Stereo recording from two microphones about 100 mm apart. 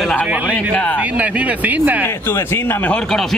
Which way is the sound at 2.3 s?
25° left (ahead or behind).